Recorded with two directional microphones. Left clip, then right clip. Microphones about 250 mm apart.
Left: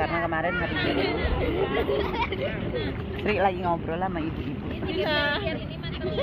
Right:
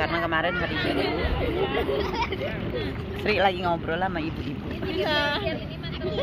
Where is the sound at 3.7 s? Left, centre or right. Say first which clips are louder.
Right 1 dB; centre.